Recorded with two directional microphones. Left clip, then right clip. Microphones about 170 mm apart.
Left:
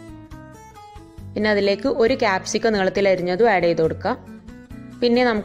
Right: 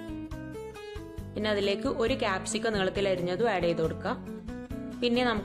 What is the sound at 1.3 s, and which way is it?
A woman's voice, 25° left (ahead or behind).